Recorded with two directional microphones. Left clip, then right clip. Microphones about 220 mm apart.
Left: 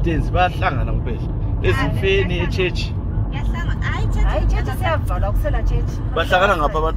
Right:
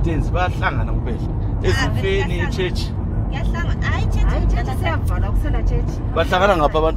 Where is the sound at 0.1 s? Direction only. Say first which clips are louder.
Left 4 dB; centre (ahead or behind).